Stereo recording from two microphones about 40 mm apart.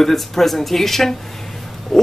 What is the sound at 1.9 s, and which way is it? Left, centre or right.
Pig, centre.